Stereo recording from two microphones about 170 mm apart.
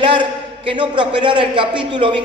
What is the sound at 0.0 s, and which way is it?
A man's voice, 30° right (ahead or behind).